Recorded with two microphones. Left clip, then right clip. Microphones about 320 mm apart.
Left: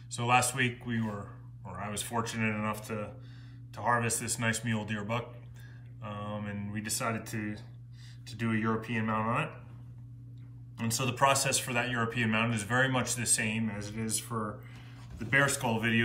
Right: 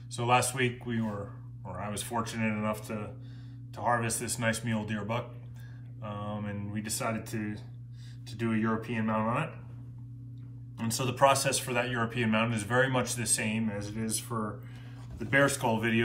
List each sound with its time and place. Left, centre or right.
0.1 s a man's voice: centre
10.8 s a man's voice: centre